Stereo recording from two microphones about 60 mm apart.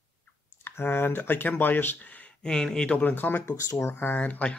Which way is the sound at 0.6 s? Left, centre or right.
Left.